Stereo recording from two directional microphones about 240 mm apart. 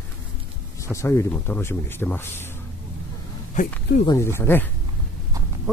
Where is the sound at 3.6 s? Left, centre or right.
Left.